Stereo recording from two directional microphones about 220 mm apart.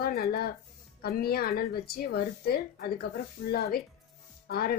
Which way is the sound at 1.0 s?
45° left (ahead or behind).